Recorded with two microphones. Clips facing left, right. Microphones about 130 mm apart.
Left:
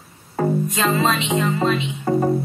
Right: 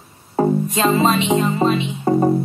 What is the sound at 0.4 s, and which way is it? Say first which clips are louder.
Music: right 3 dB; 30° right (ahead or behind).